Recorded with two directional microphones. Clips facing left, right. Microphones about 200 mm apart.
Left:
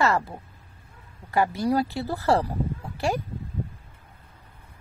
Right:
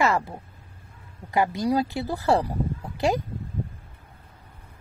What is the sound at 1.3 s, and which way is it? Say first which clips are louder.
Speech: even; 15° right (ahead or behind).